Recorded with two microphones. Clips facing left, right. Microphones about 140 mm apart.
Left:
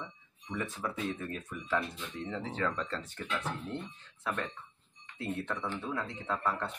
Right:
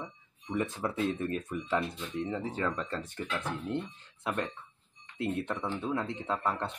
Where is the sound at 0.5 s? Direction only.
20° right (ahead or behind).